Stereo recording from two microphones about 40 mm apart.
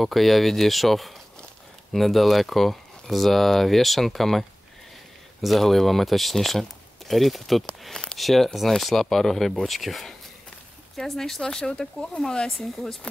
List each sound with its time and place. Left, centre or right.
0.0 s speech: centre
11.4 s speech: left; by 12.9 s centre